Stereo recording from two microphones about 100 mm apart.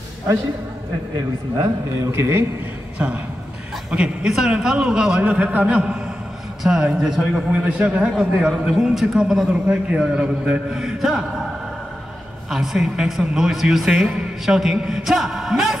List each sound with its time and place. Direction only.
1.6 s a man's voice: 30° right (ahead or behind)
3.0 s a man's voice: 10° right (ahead or behind)
12.4 s a man's voice: 5° right (ahead or behind)